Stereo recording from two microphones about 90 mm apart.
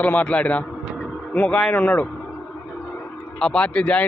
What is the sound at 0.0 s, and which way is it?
A man's voice, 15° left (ahead or behind).